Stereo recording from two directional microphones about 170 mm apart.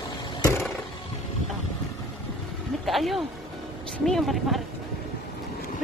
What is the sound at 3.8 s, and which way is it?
Speech, centre (ahead or behind).